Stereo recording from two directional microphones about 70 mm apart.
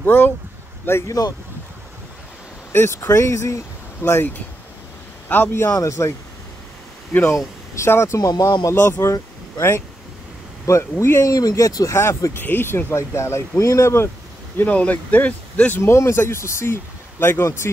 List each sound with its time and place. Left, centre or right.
0.0 s speech: left
1.0 s speech: left
3.0 s speech: left
4.0 s speech: left
5.7 s speech: left
7.3 s speech: left
8.3 s speech: left
8.7 s speech: left
11.2 s speech: left
12.0 s speech: left
12.4 s speech: left
14.6 s speech: left
15.8 s speech: left